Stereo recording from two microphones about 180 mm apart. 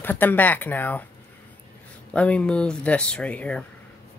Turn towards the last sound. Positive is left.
turn(degrees=5)  # may be behind; listen again after turning